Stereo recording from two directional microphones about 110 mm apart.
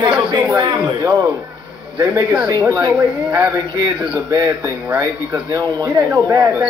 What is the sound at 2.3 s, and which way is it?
Speech, 40° right (ahead or behind).